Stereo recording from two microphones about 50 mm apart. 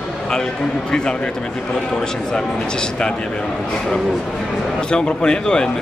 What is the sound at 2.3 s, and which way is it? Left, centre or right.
Speech, centre.